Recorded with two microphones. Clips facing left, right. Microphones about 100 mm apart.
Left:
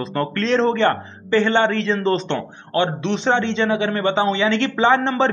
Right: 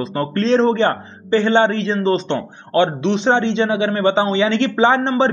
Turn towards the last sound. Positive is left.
turn(degrees=-25)  # may be behind; listen again after turning